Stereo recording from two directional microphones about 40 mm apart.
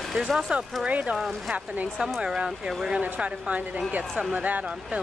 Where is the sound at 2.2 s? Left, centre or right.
Right.